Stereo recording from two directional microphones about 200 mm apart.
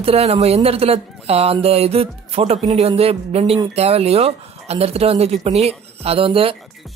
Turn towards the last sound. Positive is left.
turn(degrees=-30)  # may be behind; listen again after turning